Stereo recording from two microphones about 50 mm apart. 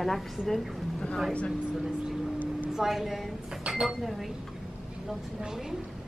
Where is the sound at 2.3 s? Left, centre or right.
Left.